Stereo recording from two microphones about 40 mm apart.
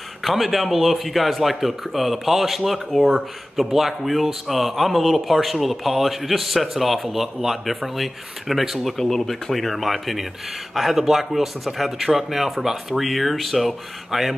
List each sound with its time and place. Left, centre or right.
0.2 s speech: centre